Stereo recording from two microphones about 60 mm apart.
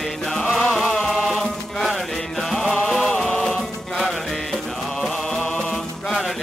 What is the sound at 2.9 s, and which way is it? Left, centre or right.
Music, centre.